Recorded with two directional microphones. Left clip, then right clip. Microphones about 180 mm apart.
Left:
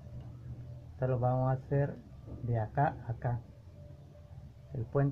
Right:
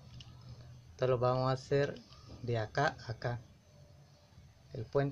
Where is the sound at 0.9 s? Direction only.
45° right (ahead or behind).